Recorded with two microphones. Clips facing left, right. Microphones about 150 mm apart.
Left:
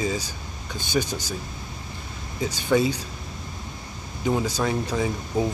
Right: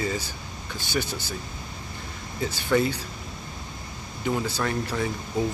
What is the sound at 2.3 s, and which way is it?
Speech, 15° left (ahead or behind).